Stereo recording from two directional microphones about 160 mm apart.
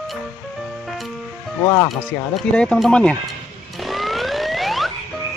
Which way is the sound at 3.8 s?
Centre (ahead or behind).